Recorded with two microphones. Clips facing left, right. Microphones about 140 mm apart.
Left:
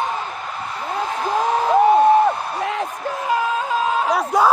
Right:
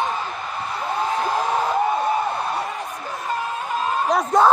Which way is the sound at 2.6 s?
90° left.